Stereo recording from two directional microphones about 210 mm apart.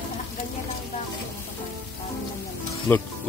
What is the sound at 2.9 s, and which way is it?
Speech, 10° left (ahead or behind).